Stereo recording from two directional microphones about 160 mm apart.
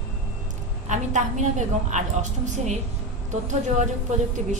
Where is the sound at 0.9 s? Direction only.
50° right (ahead or behind).